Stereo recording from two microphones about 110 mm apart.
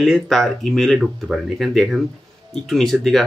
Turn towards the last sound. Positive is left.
turn(degrees=0)  # may be behind; listen again after turning